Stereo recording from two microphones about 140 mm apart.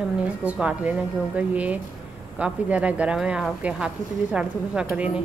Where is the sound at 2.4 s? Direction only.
10° right (ahead or behind).